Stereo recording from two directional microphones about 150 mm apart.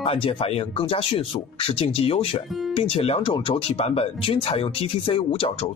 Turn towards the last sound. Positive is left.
turn(degrees=40)  # may be behind; listen again after turning